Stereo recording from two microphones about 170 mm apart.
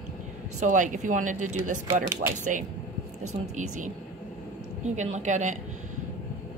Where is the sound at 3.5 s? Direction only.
45° right (ahead or behind).